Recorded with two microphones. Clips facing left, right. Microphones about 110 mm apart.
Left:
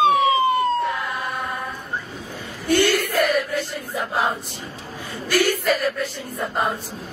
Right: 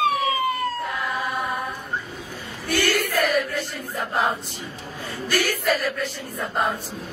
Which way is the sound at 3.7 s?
5° left (ahead or behind).